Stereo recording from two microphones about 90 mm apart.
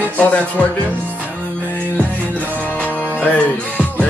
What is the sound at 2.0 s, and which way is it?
Music, 20° left (ahead or behind).